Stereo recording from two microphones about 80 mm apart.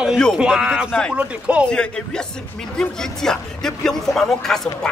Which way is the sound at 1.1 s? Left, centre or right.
Centre.